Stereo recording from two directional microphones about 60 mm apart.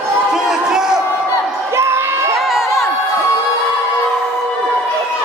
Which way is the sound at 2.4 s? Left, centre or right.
Centre.